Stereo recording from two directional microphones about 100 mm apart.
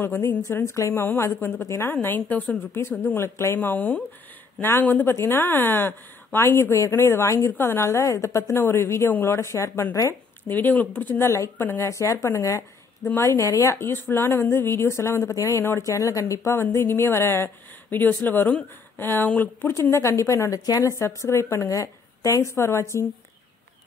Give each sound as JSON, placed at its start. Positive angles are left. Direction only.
{"t": 0.0, "sound": "a woman's voice", "side_deg": 25}
{"t": 10.5, "sound": "a woman's voice", "side_deg": 15}
{"t": 19.8, "sound": "a woman's voice", "side_deg": 30}